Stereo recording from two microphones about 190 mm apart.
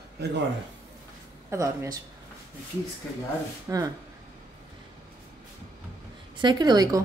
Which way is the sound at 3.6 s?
15° right (ahead or behind).